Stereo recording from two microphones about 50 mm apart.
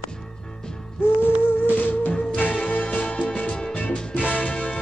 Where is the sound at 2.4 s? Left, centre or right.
Left.